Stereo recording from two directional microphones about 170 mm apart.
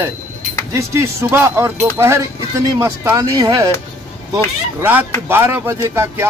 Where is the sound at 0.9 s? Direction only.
15° right (ahead or behind).